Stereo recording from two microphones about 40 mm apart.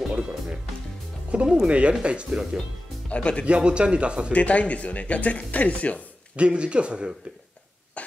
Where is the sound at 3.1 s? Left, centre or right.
Left.